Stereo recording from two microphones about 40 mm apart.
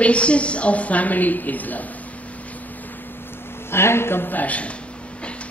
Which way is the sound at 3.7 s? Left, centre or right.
Left.